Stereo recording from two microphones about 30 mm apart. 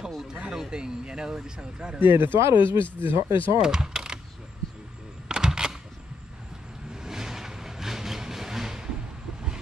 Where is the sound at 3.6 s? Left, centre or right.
Right.